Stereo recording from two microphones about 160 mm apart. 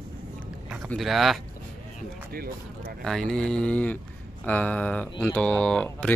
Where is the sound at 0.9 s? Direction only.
Centre (ahead or behind).